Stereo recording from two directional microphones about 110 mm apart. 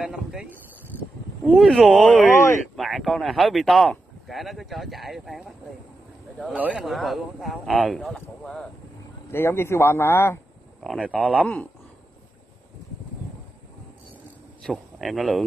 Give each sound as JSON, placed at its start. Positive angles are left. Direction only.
{"t": 0.0, "sound": "speech", "side_deg": -5}
{"t": 1.4, "sound": "speech", "side_deg": 5}
{"t": 9.3, "sound": "speech", "side_deg": 20}
{"t": 10.8, "sound": "speech", "side_deg": 0}
{"t": 14.6, "sound": "speech", "side_deg": 0}